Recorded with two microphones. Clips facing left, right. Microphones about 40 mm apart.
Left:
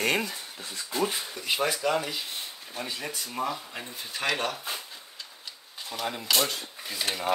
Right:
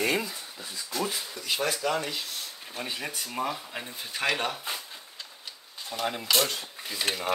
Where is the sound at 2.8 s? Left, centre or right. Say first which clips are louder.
Right 1 dB; centre.